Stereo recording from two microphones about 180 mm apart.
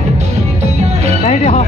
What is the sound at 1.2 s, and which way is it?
Speech, 40° left (ahead or behind).